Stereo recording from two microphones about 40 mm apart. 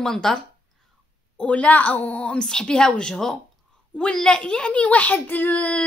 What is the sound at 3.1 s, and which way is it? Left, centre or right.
Speech, centre.